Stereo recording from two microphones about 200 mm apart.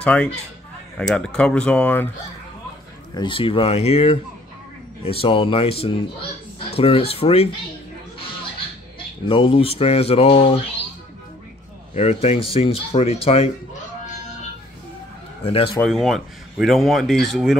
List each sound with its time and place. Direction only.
0.0 s speech: 5° left (ahead or behind)
3.2 s speech: 25° left (ahead or behind)
9.3 s speech: 30° left (ahead or behind)
11.9 s speech: 30° left (ahead or behind)
15.4 s speech: 25° left (ahead or behind)
15.8 s speech: centre (ahead or behind)